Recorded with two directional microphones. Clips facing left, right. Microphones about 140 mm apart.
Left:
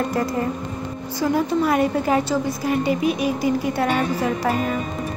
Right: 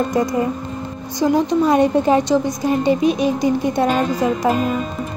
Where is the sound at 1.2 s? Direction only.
20° right (ahead or behind).